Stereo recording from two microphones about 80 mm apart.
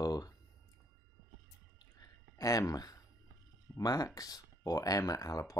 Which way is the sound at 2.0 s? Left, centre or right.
Left.